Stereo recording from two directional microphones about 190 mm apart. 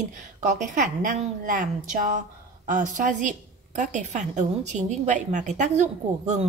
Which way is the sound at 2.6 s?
45° right (ahead or behind).